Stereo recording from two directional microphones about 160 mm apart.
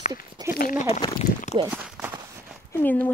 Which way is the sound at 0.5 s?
60° left (ahead or behind).